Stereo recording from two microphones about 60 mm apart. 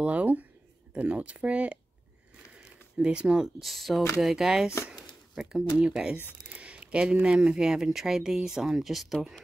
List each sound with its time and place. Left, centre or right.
0.0 s speech: right
3.0 s speech: centre